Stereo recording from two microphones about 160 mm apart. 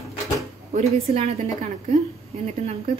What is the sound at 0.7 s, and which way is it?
A woman's voice, 40° right (ahead or behind).